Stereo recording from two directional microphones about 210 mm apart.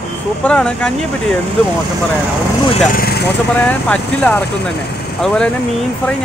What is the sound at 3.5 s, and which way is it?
Speech, 5° left (ahead or behind).